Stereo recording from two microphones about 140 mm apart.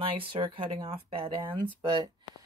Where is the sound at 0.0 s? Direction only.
40° right (ahead or behind).